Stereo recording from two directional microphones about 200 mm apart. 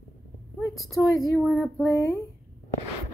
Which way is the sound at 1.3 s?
5° right (ahead or behind).